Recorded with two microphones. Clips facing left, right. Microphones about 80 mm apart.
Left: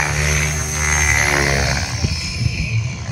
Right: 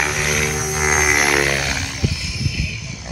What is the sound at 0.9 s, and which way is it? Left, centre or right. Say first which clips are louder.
Music: right 1 dB; centre.